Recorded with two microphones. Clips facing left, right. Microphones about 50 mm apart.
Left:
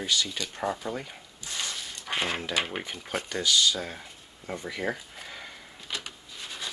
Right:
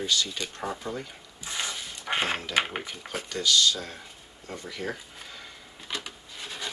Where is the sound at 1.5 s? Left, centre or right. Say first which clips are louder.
Right 2 dB; right.